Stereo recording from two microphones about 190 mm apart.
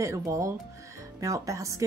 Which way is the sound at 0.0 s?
15° right (ahead or behind).